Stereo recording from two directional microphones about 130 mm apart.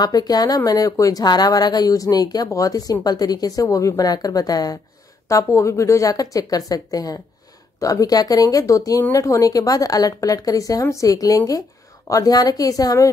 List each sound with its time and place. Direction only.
0.0 s speech: 30° left (ahead or behind)